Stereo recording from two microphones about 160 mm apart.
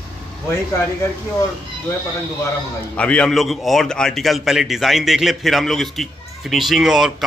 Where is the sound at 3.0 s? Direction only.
5° left (ahead or behind).